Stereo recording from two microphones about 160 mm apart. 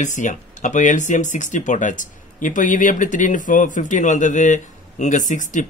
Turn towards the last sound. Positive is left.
turn(degrees=50)  # may be behind; listen again after turning